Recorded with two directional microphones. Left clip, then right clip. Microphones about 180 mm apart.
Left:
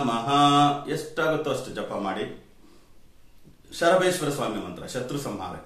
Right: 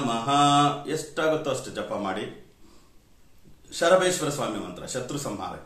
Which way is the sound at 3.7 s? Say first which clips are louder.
Even; 15° right (ahead or behind).